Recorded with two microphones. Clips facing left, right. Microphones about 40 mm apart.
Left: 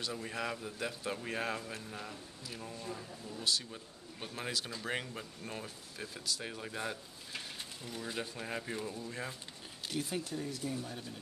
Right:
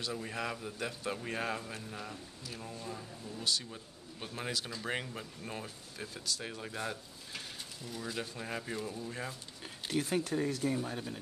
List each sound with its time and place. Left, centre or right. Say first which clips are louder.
0.0 s speech: right 1 dB; centre
9.9 s speech: right 6 dB; right
10.8 s speech: right 5 dB; right